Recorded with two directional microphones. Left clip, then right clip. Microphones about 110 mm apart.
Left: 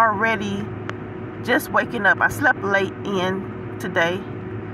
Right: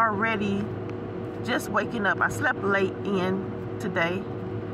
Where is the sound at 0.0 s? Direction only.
15° left (ahead or behind).